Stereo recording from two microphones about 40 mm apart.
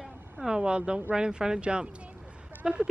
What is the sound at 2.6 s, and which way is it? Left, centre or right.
Speech, centre.